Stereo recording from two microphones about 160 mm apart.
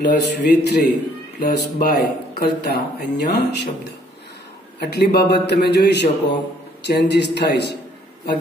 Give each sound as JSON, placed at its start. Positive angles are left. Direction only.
{"t": 0.2, "sound": "speech", "side_deg": 90}
{"t": 4.7, "sound": "speech", "side_deg": 90}